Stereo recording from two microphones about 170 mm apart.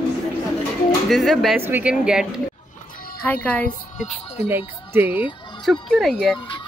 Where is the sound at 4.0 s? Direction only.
40° left (ahead or behind).